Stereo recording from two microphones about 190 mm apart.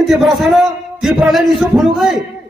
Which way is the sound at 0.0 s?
Centre (ahead or behind).